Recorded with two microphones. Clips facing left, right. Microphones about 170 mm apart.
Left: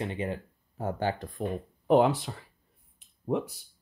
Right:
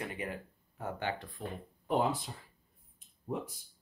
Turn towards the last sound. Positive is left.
turn(degrees=75)  # may be behind; listen again after turning